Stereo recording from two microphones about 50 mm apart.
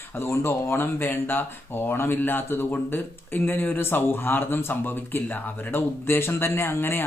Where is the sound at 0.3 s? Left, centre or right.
Left.